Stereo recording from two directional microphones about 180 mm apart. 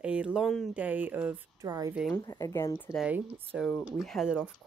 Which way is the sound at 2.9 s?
5° right (ahead or behind).